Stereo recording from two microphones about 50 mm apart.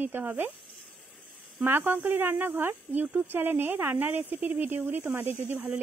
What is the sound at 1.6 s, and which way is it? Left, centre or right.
Speech, right.